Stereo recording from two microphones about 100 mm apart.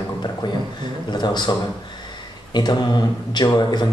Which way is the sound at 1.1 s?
45° left (ahead or behind).